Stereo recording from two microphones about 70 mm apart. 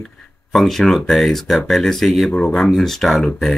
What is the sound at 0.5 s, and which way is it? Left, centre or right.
Speech, centre.